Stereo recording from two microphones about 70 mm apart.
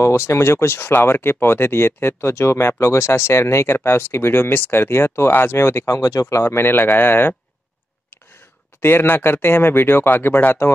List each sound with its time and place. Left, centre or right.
0.0 s speech: left
8.8 s speech: left